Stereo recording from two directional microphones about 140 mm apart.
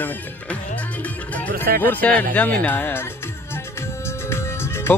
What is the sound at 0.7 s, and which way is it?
Music, 10° left (ahead or behind).